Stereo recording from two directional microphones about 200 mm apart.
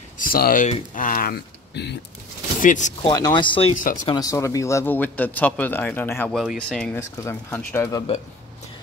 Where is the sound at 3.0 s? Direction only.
20° left (ahead or behind).